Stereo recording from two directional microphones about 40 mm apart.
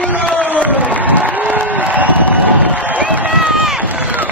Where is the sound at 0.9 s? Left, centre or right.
Right.